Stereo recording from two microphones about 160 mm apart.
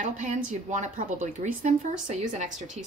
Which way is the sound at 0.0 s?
50° right (ahead or behind).